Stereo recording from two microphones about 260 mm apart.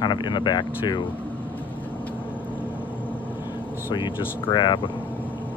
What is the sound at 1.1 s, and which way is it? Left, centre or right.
Air conditioning, centre.